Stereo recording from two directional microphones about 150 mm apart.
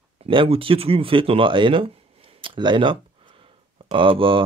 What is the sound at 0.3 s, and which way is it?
Speech, 35° right (ahead or behind).